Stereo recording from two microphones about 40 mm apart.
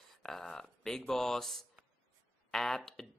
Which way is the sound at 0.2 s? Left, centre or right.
Centre.